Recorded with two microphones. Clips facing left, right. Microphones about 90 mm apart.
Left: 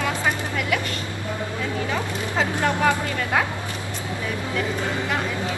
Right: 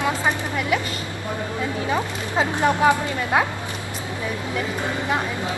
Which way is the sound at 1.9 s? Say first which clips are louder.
Right 2 dB; 20° right (ahead or behind).